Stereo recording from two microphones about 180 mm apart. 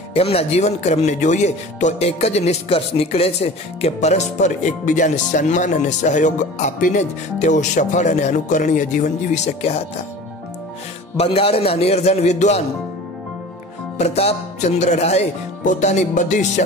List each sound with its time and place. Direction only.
0.1 s speech: 35° left (ahead or behind)
11.1 s speech: 30° left (ahead or behind)
13.9 s speech: 35° left (ahead or behind)